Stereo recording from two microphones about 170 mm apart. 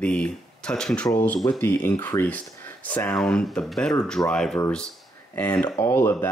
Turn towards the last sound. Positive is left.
turn(degrees=10)  # may be behind; listen again after turning